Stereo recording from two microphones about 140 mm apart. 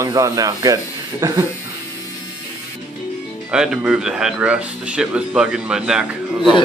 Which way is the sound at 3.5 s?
5° right (ahead or behind).